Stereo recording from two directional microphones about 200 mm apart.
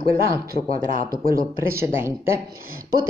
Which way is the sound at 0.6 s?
30° left (ahead or behind).